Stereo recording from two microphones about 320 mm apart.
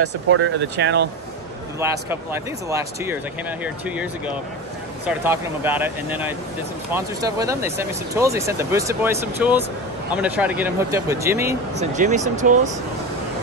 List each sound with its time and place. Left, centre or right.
0.0 s speech: right
1.8 s speech: centre
11.8 s speech: right